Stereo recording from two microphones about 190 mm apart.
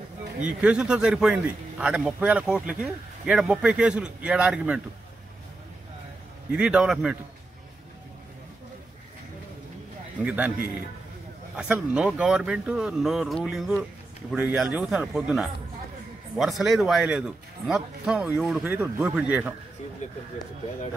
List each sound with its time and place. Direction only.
0.5 s a man's voice: 5° right (ahead or behind)
6.5 s a man's voice: 5° right (ahead or behind)
10.2 s a man's voice: 5° right (ahead or behind)
11.5 s a man's voice: 5° right (ahead or behind)
20.0 s speech: 40° left (ahead or behind)